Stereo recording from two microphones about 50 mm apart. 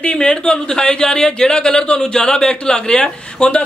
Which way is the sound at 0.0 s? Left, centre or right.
Centre.